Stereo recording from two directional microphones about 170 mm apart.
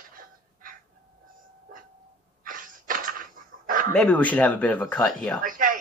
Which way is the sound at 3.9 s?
5° left (ahead or behind).